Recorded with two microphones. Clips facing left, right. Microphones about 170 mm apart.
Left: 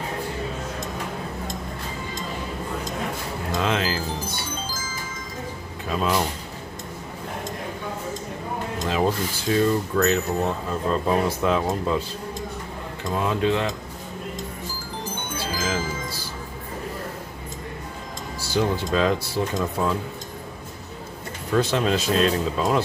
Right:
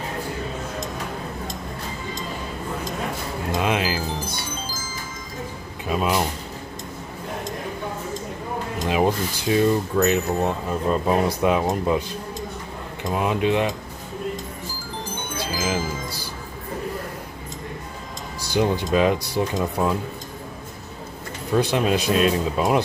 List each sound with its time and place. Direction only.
3.5 s speech: 15° right (ahead or behind)
5.9 s speech: 15° right (ahead or behind)
8.8 s speech: 15° right (ahead or behind)
13.0 s speech: 15° right (ahead or behind)
15.3 s music: 10° right (ahead or behind)
18.4 s speech: 15° right (ahead or behind)
21.5 s speech: 15° right (ahead or behind)